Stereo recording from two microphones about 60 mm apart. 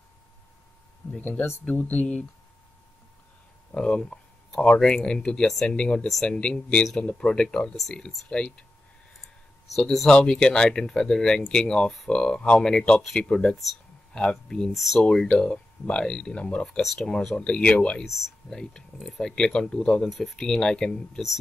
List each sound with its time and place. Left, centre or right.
1.7 s speech: left
3.7 s speech: centre
9.8 s speech: centre
14.7 s speech: centre
20.1 s speech: centre
20.3 s speech: centre